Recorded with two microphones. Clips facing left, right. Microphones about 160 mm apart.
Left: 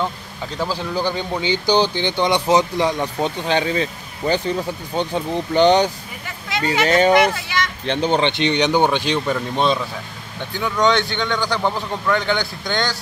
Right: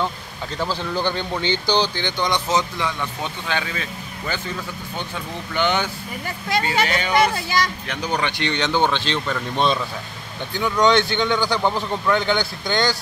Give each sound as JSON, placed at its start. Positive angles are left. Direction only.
{"t": 0.6, "sound": "speech", "side_deg": 10}
{"t": 2.0, "sound": "speech", "side_deg": 20}
{"t": 2.8, "sound": "speech", "side_deg": 35}
{"t": 6.9, "sound": "speech", "side_deg": 40}
{"t": 7.4, "sound": "speech", "side_deg": -35}
{"t": 7.8, "sound": "speech", "side_deg": 30}
{"t": 10.6, "sound": "a man's voice", "side_deg": 0}